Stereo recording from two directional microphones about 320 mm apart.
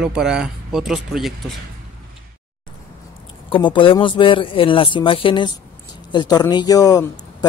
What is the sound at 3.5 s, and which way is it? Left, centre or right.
Speech, centre.